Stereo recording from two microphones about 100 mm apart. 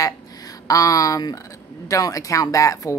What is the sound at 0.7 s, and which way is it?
Speech, 35° left (ahead or behind).